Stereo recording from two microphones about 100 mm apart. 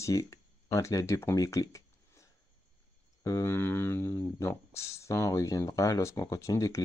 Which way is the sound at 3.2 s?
25° left (ahead or behind).